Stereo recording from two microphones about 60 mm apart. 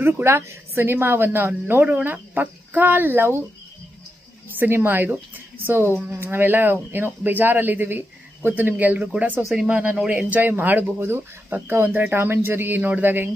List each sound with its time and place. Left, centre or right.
0.0 s speech: right
4.6 s speech: right
9.4 s speech: centre
9.7 s a man's voice: centre